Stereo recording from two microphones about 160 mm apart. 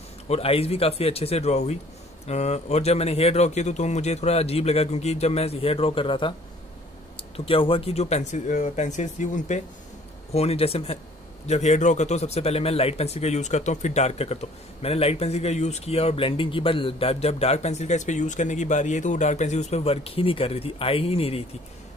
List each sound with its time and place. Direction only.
0.3 s a man's voice: 40° left (ahead or behind)
7.3 s a man's voice: 35° left (ahead or behind)